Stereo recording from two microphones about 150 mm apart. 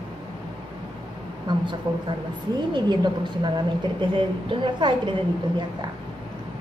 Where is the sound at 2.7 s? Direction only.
30° right (ahead or behind).